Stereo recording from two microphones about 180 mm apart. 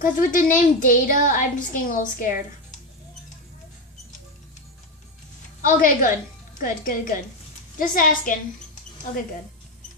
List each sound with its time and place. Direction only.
0.0 s a woman's voice: 50° left (ahead or behind)
5.6 s a woman's voice: 50° left (ahead or behind)